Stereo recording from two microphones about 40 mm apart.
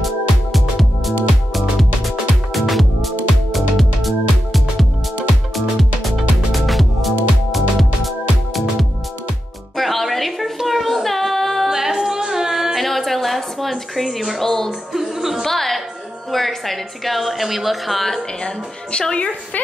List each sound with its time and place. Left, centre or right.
0.0 s music: centre
9.8 s music: centre
10.6 s child singing: centre
11.7 s a sound: centre
14.9 s music: centre
15.4 s music: centre
16.3 s a woman's voice: centre
18.4 s a woman's voice: left